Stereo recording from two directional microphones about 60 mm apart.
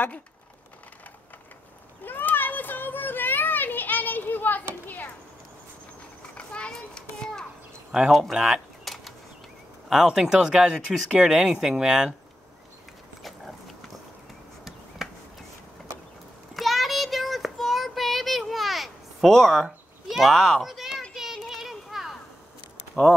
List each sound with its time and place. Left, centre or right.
2.0 s children playing: left
4.8 s a sound: left
6.3 s children playing: centre
8.1 s a sound: centre
9.8 s speech: centre
13.2 s dog: centre
16.5 s child singing: centre
20.1 s speech: centre
21.1 s a sound: centre